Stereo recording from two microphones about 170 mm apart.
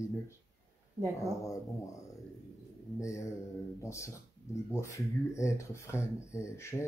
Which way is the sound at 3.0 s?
15° left (ahead or behind).